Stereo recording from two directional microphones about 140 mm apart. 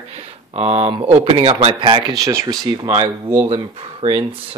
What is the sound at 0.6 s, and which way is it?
Speech, 45° right (ahead or behind).